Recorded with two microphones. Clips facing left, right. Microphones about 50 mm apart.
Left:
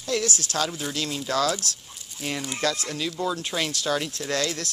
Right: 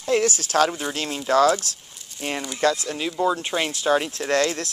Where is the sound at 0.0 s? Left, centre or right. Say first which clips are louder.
Right 5 dB; right.